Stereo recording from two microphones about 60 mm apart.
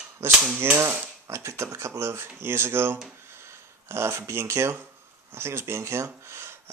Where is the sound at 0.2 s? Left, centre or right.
Right.